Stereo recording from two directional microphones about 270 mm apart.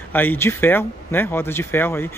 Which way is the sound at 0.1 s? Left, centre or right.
Centre.